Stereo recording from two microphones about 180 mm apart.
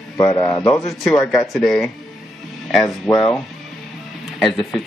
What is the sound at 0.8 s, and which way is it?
Speech, centre (ahead or behind).